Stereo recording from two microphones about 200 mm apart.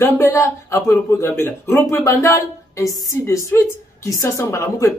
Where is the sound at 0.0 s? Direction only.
15° left (ahead or behind).